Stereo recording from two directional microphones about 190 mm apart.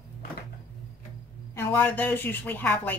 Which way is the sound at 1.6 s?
10° left (ahead or behind).